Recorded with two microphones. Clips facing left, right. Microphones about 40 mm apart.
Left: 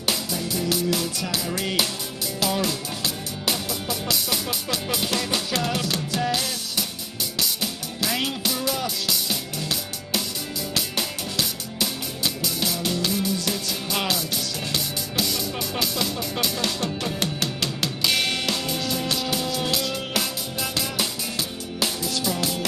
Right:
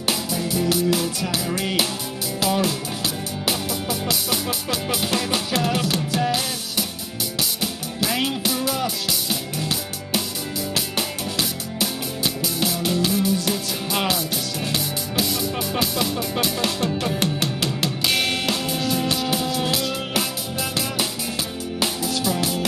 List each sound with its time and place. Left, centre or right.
0.0 s music: centre
2.4 s speech: centre
4.1 s music: centre
22.0 s music: centre